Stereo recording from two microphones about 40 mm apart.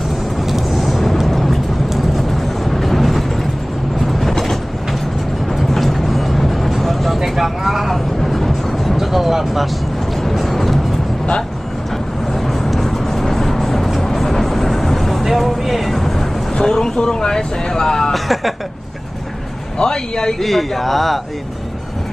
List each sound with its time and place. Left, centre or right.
0.5 s vehicle: centre
4.0 s train: centre
5.7 s vehicle: centre
10.3 s music: centre
12.4 s vehicle: centre
16.5 s vehicle: centre
18.1 s a sound: centre
19.8 s a sound: centre
20.3 s speech: centre